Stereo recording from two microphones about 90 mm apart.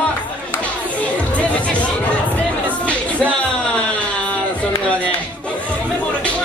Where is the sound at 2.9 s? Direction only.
15° left (ahead or behind).